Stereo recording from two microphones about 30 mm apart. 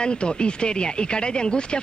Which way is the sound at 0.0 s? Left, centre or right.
Left.